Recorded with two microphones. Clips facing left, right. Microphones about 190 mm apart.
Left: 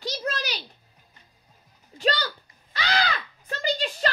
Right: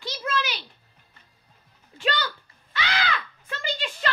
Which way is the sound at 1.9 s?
40° left (ahead or behind).